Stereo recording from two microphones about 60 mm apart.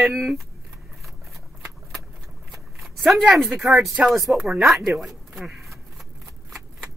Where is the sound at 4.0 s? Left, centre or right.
Right.